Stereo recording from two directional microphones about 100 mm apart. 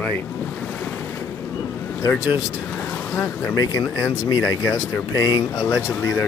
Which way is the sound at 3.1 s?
35° left (ahead or behind).